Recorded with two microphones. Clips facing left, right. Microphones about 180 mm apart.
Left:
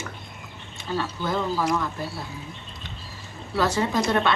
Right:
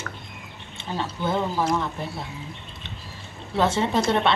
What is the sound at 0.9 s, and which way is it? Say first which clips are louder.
Speech: right 1 dB; 20° right (ahead or behind).